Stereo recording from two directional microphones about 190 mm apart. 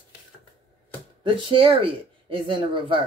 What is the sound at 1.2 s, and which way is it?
Speech, 25° right (ahead or behind).